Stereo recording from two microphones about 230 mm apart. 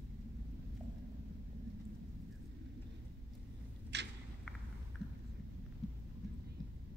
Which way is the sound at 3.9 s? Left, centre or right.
Right.